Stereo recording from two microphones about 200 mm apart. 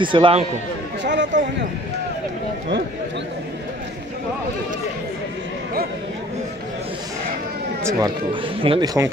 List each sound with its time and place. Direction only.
0.0 s speech: 25° right (ahead or behind)
1.0 s a sound: 60° right (ahead or behind)
7.8 s speech: 20° right (ahead or behind)